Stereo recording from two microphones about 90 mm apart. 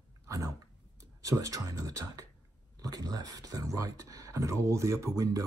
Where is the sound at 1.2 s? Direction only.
40° right (ahead or behind).